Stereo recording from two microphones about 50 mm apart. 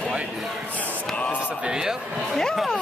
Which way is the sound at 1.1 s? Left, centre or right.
Left.